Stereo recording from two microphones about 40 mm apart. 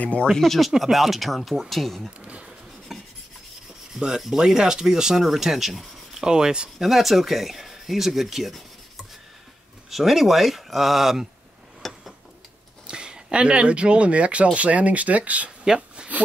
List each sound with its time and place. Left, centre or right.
0.0 s speech: left
0.3 s speech: centre
0.7 s speech: centre
2.9 s filing: centre
4.2 s speech: centre
6.2 s speech: centre
6.8 s speech: centre
9.8 s speech: centre
11.8 s a sound: centre
12.8 s speech: right
15.6 s a sound: centre